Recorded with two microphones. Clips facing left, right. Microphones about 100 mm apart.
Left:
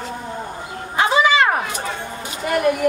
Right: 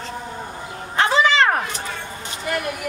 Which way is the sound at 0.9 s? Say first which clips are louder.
Left 1 dB; 10° left (ahead or behind).